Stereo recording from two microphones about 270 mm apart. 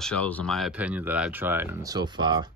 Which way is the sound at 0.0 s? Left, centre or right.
Centre.